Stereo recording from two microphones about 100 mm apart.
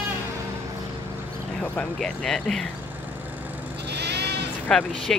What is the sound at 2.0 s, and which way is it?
Speech, 5° left (ahead or behind).